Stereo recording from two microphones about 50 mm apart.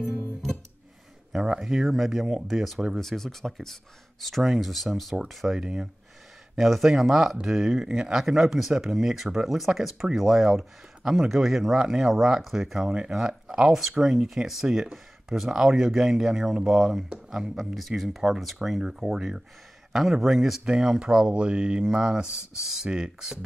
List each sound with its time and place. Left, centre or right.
1.3 s a sound: centre
1.6 s speech: centre
6.5 s speech: centre
18.9 s speech: centre
19.9 s speech: centre
20.6 s speech: centre